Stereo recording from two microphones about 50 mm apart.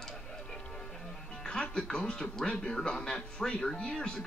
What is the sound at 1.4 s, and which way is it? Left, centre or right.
Speech, centre.